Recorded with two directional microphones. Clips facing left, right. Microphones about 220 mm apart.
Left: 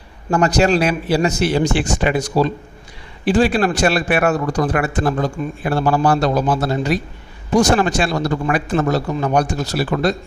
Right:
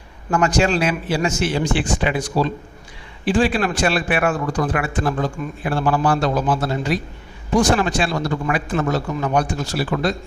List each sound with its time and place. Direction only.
0.3 s a man's voice: 35° left (ahead or behind)
3.3 s a man's voice: 40° left (ahead or behind)